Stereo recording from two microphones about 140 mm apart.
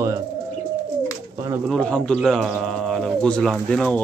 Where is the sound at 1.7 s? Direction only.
5° left (ahead or behind).